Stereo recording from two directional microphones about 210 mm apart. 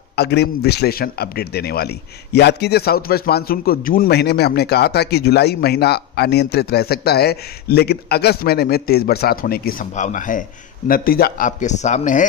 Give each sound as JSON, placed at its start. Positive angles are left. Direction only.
{"t": 0.1, "sound": "a man's voice", "side_deg": 50}